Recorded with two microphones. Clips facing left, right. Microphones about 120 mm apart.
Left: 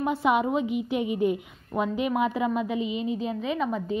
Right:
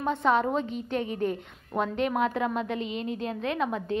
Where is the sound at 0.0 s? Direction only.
10° left (ahead or behind).